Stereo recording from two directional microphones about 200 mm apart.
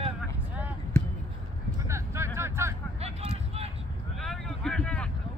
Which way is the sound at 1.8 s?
15° right (ahead or behind).